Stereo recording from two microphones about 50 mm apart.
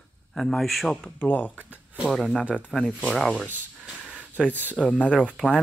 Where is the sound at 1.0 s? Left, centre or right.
Left.